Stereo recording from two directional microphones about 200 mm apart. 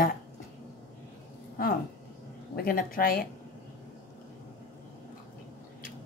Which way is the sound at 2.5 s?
45° left (ahead or behind).